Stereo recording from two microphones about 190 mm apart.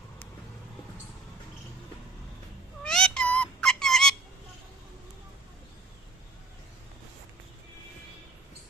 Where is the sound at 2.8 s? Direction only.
5° left (ahead or behind).